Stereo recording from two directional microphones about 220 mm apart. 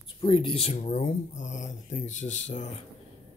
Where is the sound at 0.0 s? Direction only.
25° left (ahead or behind).